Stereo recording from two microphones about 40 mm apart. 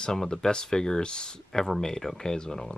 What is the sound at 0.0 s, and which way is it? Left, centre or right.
Speech, centre.